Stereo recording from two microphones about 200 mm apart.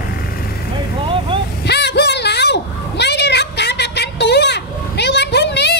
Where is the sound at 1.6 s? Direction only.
55° left (ahead or behind).